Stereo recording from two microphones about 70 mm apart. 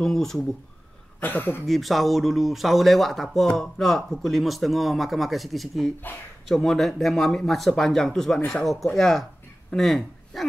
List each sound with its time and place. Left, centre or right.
0.0 s speech: centre
1.2 s speech: left
1.7 s speech: centre
9.7 s a sound: centre